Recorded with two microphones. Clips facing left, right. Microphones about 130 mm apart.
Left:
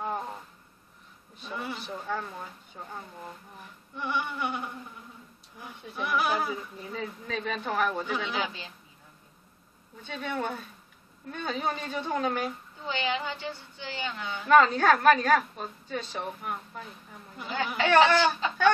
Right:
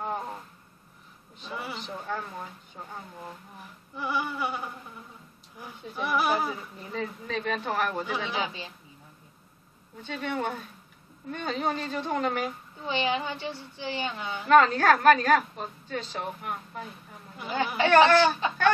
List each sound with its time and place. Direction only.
0.0 s a sound: centre (ahead or behind)
1.5 s a sound: 5° right (ahead or behind)
1.8 s speech: centre (ahead or behind)
3.9 s speech: 5° right (ahead or behind)
10.0 s speech: centre (ahead or behind)
12.8 s a woman's voice: 15° right (ahead or behind)
14.5 s speech: centre (ahead or behind)
17.8 s a woman's voice: 5° right (ahead or behind)